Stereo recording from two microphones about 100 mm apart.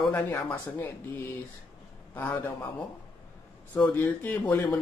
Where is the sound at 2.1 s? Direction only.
20° left (ahead or behind).